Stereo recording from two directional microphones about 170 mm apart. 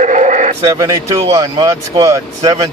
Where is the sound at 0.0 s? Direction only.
45° right (ahead or behind).